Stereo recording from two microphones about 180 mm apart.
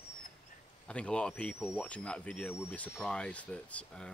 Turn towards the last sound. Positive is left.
turn(degrees=5)  # may be behind; listen again after turning